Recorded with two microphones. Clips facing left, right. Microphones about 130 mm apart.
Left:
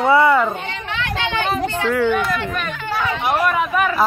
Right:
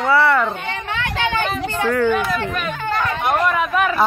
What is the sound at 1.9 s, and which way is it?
Speech, 5° left (ahead or behind).